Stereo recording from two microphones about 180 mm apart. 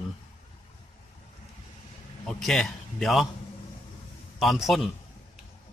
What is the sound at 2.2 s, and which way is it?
A man's voice, centre (ahead or behind).